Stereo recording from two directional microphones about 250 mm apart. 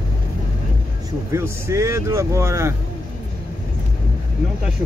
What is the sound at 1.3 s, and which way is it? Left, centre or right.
Speech, centre.